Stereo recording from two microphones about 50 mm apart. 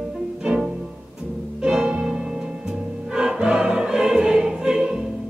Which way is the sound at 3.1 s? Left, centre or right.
Centre.